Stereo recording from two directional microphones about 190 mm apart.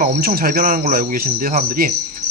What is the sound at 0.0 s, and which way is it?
Speech, 50° right (ahead or behind).